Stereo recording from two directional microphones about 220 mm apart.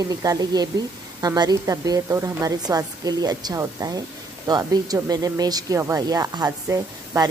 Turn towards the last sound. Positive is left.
turn(degrees=-15)  # may be behind; listen again after turning